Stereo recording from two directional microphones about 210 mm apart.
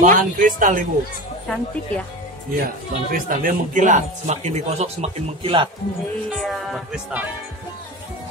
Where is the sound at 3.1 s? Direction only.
40° right (ahead or behind).